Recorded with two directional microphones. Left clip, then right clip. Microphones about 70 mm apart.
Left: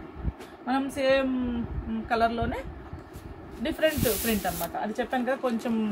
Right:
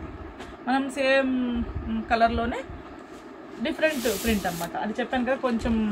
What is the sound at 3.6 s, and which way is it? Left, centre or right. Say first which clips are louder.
Speech: right 1 dB; centre.